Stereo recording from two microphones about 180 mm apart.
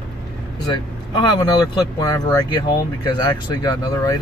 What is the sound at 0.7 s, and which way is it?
Speech, 25° left (ahead or behind).